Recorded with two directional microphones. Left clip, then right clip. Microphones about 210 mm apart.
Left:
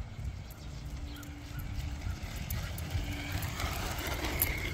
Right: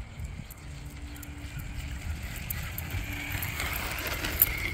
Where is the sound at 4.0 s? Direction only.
20° right (ahead or behind).